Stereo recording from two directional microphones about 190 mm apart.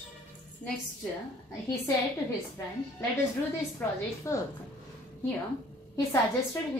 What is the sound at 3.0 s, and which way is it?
Speech, 15° left (ahead or behind).